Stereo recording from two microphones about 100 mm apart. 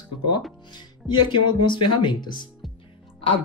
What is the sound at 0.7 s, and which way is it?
Speech, 50° left (ahead or behind).